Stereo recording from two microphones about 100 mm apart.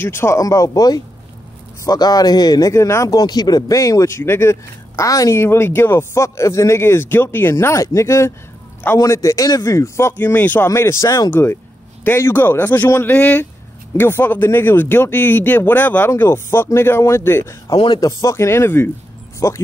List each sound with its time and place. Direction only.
0.0 s speech: 25° left (ahead or behind)
2.7 s speech: 30° left (ahead or behind)
10.1 s speech: 15° left (ahead or behind)
16.1 s speech: 25° left (ahead or behind)
17.9 s speech: 35° left (ahead or behind)